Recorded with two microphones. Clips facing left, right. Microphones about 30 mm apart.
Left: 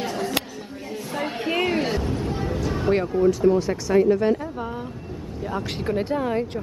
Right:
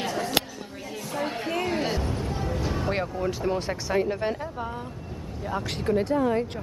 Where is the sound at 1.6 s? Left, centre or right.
Centre.